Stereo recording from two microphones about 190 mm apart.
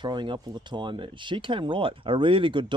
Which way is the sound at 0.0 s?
25° right (ahead or behind).